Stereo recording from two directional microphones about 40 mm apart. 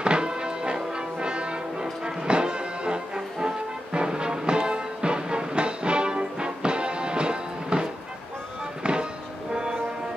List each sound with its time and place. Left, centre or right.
0.0 s music: right